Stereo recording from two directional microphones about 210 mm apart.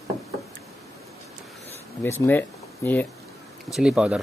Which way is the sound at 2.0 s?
10° left (ahead or behind).